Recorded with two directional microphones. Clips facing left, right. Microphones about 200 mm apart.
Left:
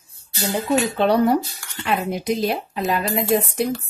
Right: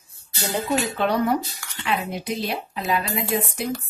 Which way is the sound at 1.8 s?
45° left (ahead or behind).